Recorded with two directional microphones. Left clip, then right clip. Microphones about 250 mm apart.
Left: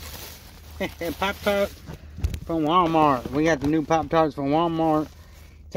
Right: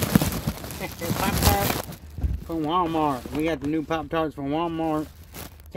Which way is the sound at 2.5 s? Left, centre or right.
Centre.